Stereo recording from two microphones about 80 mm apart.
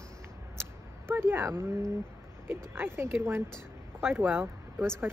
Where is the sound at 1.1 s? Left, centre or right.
Right.